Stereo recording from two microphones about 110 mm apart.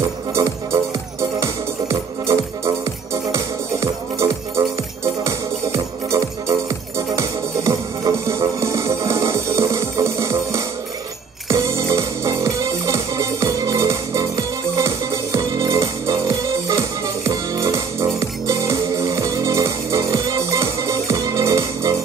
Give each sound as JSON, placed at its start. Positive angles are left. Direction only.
{"t": 0.3, "sound": "music", "side_deg": -25}